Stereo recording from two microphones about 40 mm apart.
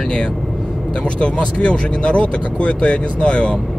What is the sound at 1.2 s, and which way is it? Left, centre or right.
Speech, left.